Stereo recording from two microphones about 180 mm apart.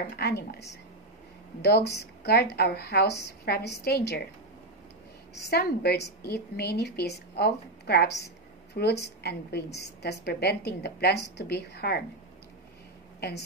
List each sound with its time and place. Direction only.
0.1 s a woman's voice: 65° left (ahead or behind)
5.3 s a woman's voice: 65° left (ahead or behind)